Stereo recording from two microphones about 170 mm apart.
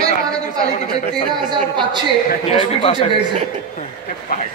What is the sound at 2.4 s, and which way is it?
Speech, 30° left (ahead or behind).